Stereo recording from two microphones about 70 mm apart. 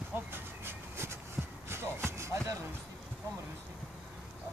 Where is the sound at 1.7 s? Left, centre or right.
Right.